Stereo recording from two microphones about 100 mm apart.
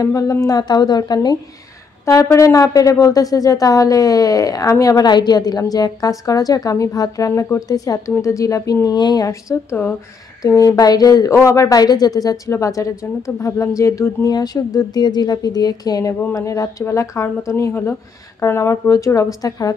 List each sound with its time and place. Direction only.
0.0 s speech: 35° left (ahead or behind)
2.0 s speech: 30° left (ahead or behind)
8.8 s speech: 45° left (ahead or behind)